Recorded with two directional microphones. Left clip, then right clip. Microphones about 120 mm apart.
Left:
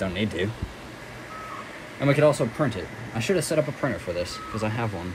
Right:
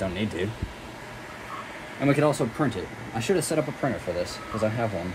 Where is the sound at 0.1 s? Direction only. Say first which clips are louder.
Left 2 dB; 70° right (ahead or behind).